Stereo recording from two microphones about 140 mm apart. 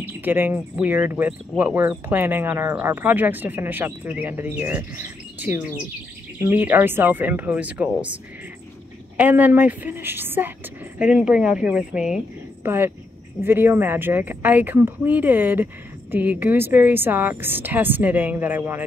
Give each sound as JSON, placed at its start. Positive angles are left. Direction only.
{"t": 0.0, "sound": "speech", "side_deg": -15}
{"t": 9.1, "sound": "speech", "side_deg": -10}
{"t": 12.6, "sound": "speech", "side_deg": -15}